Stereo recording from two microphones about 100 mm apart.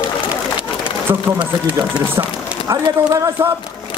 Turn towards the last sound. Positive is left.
turn(degrees=-35)  # may be behind; listen again after turning